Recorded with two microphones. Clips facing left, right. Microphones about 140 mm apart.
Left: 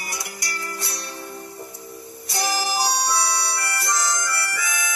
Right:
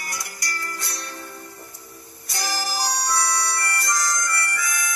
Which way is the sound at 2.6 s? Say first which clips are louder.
Left 2 dB; 20° left (ahead or behind).